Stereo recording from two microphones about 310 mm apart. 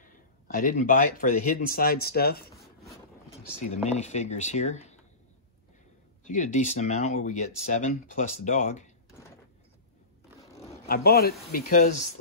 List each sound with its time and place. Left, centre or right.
0.0 s speech: left
6.2 s speech: left
10.9 s speech: left